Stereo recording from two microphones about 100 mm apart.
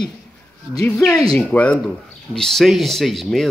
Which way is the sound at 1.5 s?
15° left (ahead or behind).